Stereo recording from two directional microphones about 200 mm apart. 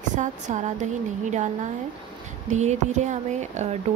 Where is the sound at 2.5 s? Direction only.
35° right (ahead or behind).